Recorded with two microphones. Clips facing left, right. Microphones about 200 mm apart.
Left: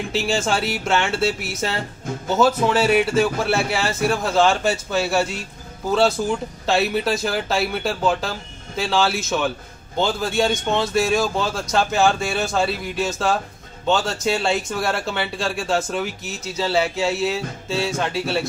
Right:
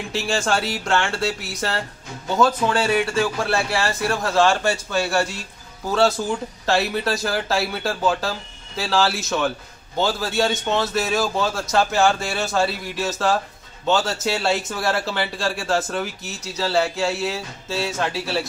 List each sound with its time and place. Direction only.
0.1 s a man's voice: centre (ahead or behind)